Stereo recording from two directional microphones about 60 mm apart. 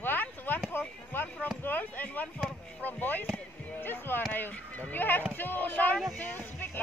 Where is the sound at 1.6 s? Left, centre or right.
Left.